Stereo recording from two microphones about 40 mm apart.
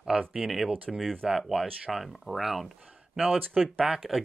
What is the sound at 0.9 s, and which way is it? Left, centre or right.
Speech, centre.